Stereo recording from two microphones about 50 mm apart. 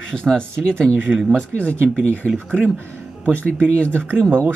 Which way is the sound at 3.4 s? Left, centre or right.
Left.